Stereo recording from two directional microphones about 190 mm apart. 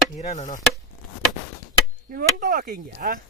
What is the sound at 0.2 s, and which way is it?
Chop, 40° left (ahead or behind).